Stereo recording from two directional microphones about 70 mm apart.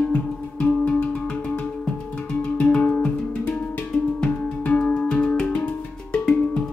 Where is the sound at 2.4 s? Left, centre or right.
Centre.